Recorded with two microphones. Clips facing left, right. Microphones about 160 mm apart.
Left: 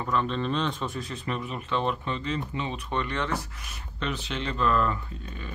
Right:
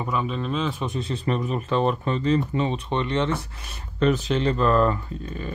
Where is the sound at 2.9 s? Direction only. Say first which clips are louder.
Right 3 dB; 20° right (ahead or behind).